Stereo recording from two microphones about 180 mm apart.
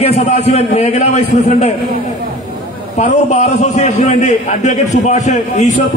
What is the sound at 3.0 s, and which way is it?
A man's voice, 40° left (ahead or behind).